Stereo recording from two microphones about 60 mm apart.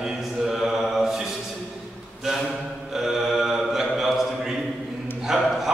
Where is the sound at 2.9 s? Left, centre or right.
Centre.